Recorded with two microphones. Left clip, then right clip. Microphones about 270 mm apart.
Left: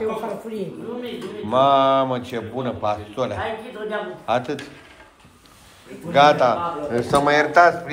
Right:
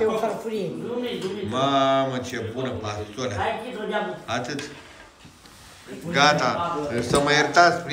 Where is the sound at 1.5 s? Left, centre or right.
Centre.